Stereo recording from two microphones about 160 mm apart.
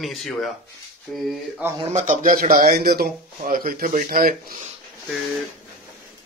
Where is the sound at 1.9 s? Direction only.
50° right (ahead or behind).